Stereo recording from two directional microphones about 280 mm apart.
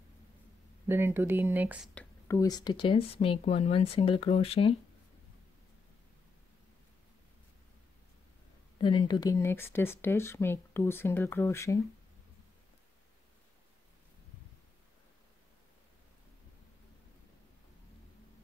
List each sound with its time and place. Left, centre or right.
0.8 s speech: centre
2.0 s speech: centre
8.7 s speech: centre